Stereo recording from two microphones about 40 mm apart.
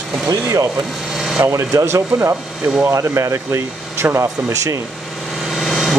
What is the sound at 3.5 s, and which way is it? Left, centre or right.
Speech, right.